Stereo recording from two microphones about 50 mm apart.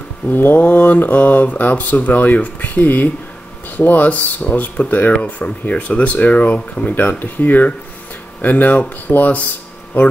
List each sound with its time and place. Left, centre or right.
0.3 s speech: left